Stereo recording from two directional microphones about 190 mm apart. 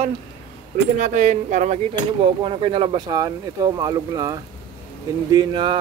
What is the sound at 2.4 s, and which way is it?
Speech, 30° right (ahead or behind).